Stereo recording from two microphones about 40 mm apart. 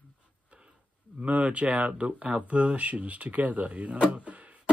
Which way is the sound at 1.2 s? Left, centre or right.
Right.